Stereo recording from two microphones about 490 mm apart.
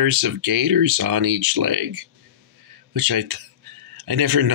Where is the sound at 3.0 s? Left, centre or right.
Right.